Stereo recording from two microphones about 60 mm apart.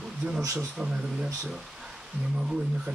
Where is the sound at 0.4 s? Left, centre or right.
Right.